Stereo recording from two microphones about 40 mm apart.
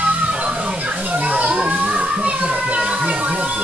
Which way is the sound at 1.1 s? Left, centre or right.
Right.